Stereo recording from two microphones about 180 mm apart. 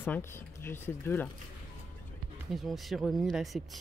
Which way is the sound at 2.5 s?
Centre (ahead or behind).